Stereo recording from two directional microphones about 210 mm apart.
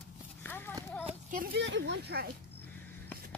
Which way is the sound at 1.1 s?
40° right (ahead or behind).